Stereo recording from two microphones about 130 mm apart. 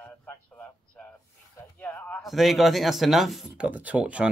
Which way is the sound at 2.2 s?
Centre (ahead or behind).